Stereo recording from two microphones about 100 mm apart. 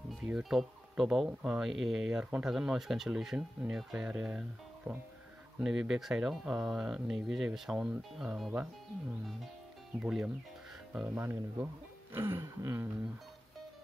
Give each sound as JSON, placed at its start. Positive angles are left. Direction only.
{"t": 0.2, "sound": "speech", "side_deg": -5}